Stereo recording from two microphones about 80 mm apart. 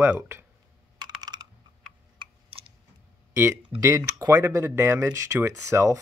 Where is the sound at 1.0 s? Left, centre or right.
Right.